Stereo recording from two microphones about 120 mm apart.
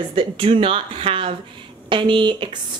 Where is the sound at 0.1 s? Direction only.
45° right (ahead or behind).